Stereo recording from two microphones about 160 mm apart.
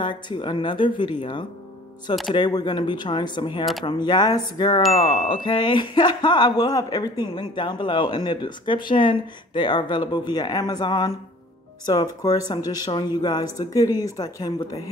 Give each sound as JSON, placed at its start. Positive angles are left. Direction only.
{"t": 0.0, "sound": "speech", "side_deg": 30}
{"t": 2.3, "sound": "speech", "side_deg": 30}